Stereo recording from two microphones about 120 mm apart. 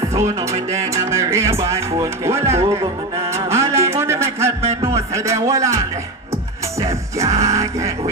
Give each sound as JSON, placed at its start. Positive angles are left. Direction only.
{"t": 0.1, "sound": "music", "side_deg": -25}
{"t": 0.9, "sound": "speech", "side_deg": -25}
{"t": 3.2, "sound": "music", "side_deg": -25}
{"t": 7.4, "sound": "speech", "side_deg": -25}